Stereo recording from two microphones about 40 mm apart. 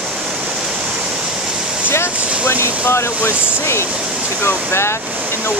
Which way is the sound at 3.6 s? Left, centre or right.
Left.